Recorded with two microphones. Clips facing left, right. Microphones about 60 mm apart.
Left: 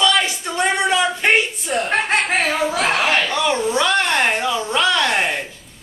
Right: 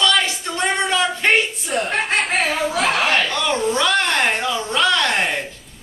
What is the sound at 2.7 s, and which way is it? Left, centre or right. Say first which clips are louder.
Speech: even; left.